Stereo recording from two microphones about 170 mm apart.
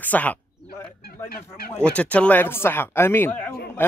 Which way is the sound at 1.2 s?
60° left (ahead or behind).